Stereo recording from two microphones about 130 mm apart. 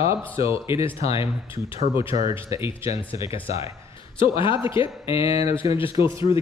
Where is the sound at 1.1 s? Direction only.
45° left (ahead or behind).